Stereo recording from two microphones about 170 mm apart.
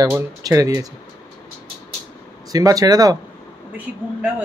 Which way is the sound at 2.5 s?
20° right (ahead or behind).